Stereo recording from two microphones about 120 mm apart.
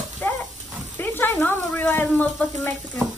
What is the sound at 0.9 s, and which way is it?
Speech, 15° left (ahead or behind).